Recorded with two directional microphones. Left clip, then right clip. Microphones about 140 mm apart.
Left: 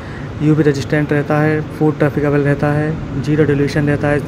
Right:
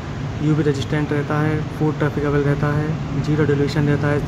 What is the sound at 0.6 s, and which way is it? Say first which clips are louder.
Speech: left 6 dB; 25° left (ahead or behind).